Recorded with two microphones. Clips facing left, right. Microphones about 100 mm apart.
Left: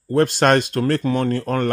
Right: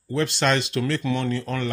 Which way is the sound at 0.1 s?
50° left (ahead or behind).